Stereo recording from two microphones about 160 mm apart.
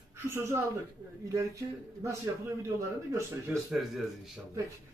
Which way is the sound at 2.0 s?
15° right (ahead or behind).